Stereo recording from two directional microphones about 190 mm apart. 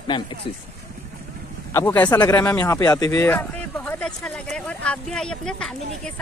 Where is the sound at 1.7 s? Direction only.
10° left (ahead or behind).